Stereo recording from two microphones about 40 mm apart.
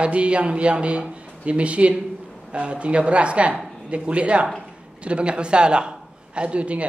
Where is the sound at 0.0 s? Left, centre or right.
Right.